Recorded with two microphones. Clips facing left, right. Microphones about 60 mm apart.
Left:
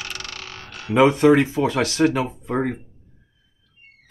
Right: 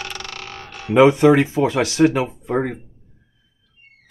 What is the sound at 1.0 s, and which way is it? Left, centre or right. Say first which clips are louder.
Speech: right 2 dB; centre.